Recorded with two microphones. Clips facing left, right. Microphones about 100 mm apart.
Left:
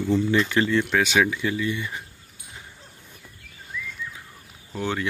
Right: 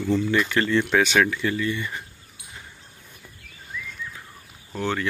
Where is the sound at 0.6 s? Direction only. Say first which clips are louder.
Right 1 dB; 5° left (ahead or behind).